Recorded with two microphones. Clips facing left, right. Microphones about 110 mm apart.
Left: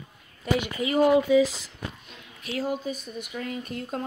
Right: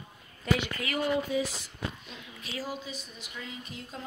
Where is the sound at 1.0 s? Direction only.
85° left.